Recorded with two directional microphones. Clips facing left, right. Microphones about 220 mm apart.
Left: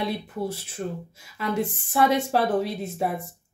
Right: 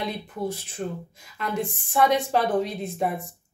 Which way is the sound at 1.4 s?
5° left (ahead or behind).